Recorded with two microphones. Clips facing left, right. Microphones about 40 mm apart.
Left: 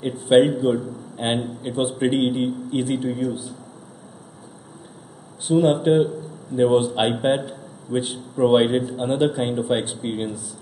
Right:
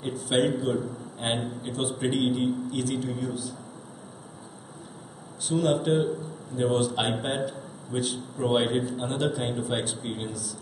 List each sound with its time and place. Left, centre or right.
0.1 s a man's voice: left
5.5 s speech: left
8.4 s speech: centre